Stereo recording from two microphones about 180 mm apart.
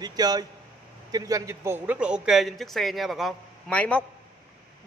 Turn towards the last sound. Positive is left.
turn(degrees=5)  # may be behind; listen again after turning